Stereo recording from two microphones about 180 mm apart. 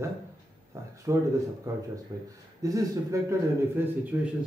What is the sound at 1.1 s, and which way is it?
A man's voice, 15° right (ahead or behind).